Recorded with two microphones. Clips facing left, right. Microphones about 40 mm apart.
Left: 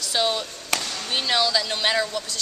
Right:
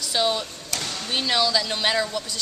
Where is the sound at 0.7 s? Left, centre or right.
Left.